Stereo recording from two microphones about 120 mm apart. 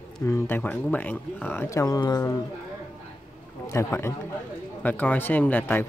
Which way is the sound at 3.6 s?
20° left (ahead or behind).